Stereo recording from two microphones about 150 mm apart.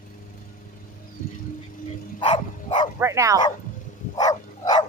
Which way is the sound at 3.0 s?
20° right (ahead or behind).